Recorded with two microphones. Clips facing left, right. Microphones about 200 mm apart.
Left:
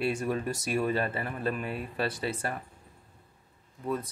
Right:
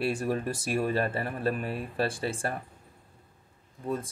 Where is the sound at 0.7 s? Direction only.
45° right (ahead or behind).